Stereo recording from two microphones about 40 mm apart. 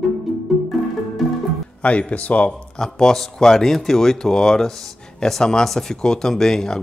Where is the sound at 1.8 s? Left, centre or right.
Left.